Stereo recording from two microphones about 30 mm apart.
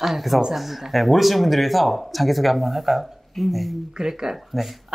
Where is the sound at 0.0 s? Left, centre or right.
Centre.